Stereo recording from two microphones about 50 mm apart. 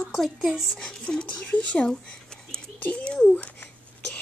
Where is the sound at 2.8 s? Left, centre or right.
Left.